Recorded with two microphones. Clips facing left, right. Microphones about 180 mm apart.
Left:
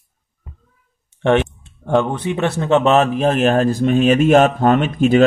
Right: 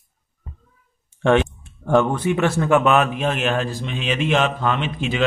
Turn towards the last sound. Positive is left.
turn(degrees=45)  # may be behind; listen again after turning